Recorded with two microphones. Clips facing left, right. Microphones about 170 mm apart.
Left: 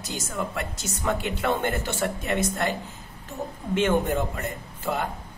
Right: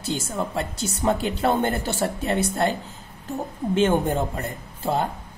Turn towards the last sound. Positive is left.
turn(degrees=-30)  # may be behind; listen again after turning